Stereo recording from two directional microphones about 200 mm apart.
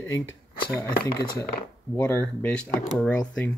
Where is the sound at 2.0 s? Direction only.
10° left (ahead or behind).